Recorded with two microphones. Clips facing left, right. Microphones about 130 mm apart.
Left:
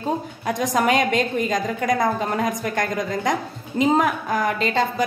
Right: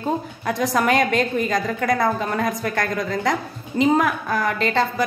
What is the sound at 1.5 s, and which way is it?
A woman's voice, 20° left (ahead or behind).